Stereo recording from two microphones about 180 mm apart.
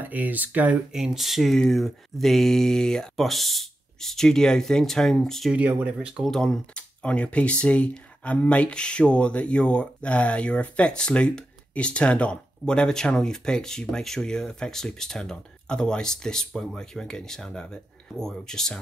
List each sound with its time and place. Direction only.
0.0 s speech: 10° right (ahead or behind)